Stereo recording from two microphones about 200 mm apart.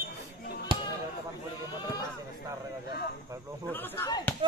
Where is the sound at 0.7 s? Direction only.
25° right (ahead or behind).